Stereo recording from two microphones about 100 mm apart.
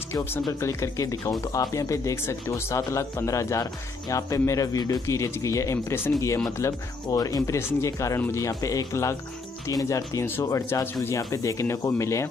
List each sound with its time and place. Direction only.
0.1 s a man's voice: 25° left (ahead or behind)
6.6 s a man's voice: 35° left (ahead or behind)